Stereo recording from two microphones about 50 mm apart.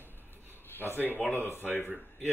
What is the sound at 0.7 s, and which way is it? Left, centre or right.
Speech, left.